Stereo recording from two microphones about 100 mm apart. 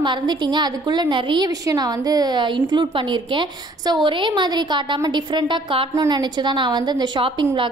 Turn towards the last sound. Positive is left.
turn(degrees=-55)  # may be behind; listen again after turning